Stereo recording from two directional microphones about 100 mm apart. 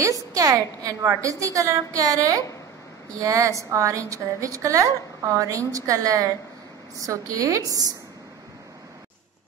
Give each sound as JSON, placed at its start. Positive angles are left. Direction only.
{"t": 0.0, "sound": "a woman's voice", "side_deg": -35}